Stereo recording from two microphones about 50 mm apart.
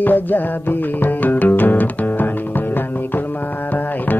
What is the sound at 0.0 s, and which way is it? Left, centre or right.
Music, left.